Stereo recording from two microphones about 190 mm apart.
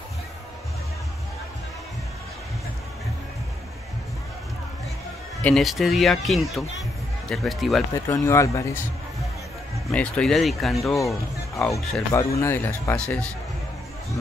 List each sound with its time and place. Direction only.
5.4 s speech: centre (ahead or behind)
7.9 s speech: 15° left (ahead or behind)
9.8 s speech: 5° left (ahead or behind)
12.1 s speech: 15° left (ahead or behind)